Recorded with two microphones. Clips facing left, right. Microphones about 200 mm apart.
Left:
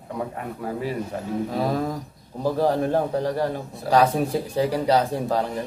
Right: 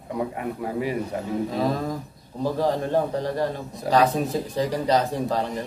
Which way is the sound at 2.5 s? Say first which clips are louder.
Left 2 dB; 10° left (ahead or behind).